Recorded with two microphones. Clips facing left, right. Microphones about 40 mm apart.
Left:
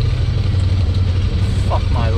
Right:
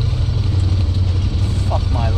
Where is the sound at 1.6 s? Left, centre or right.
Left.